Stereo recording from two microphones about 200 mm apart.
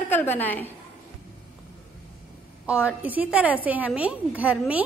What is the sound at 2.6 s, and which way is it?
A woman's voice, 5° right (ahead or behind).